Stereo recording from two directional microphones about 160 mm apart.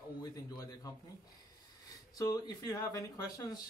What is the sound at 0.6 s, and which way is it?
Speech, 20° left (ahead or behind).